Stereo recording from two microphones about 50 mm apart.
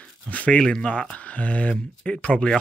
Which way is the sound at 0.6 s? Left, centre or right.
Centre.